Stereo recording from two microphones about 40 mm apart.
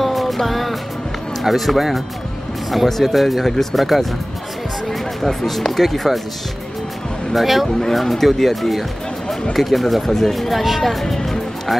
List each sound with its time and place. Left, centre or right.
0.0 s music: centre
1.4 s speech: centre
7.3 s speech: centre